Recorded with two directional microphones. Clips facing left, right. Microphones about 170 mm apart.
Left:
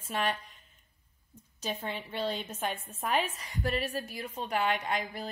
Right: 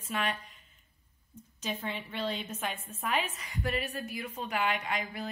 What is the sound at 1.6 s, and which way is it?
A woman's voice, 35° left (ahead or behind).